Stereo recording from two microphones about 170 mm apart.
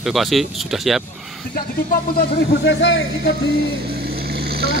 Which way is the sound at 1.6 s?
55° left (ahead or behind).